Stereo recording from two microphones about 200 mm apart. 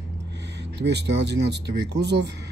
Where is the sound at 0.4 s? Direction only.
60° right (ahead or behind).